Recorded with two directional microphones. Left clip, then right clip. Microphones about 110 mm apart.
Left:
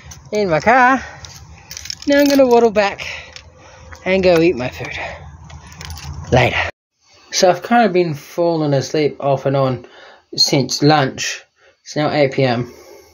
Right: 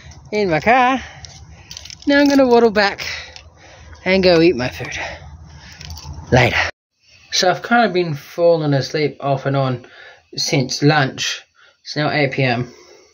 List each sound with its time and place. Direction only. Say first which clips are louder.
0.4 s speech: left 2 dB; 20° right (ahead or behind)
2.0 s a woman's voice: left 1 dB; 30° right (ahead or behind)
5.8 s keys jangling: left 3 dB; 85° left
6.3 s a woman's voice: even; 35° right (ahead or behind)
7.2 s speech: left 2 dB; 15° left (ahead or behind)